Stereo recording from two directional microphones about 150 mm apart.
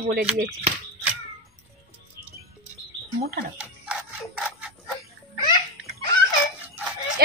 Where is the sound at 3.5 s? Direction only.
5° right (ahead or behind).